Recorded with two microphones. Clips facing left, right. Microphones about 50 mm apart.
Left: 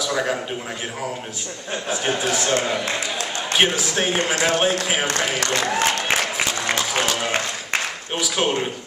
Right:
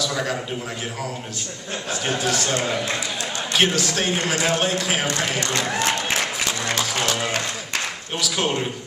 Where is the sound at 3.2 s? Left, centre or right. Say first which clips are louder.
Left 1 dB; left.